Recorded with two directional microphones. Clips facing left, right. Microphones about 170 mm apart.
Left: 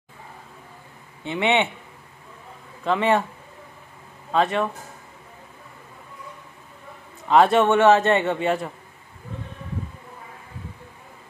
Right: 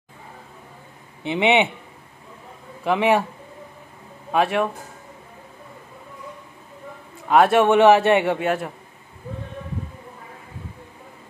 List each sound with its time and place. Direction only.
1.2 s a man's voice: 15° right (ahead or behind)
2.8 s a man's voice: 15° right (ahead or behind)
4.3 s a man's voice: 10° right (ahead or behind)
7.2 s a man's voice: 5° right (ahead or behind)